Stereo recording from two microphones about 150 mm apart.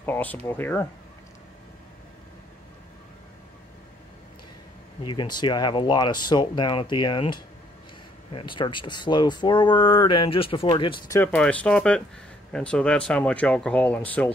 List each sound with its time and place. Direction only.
0.0 s speech: 10° left (ahead or behind)
5.0 s speech: 30° left (ahead or behind)
11.1 s speech: 10° left (ahead or behind)